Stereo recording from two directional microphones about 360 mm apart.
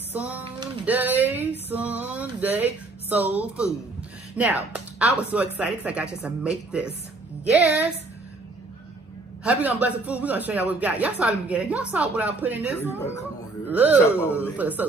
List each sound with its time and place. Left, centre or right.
0.1 s a sound: centre
1.7 s music: centre
4.4 s speech: centre
9.4 s speech: centre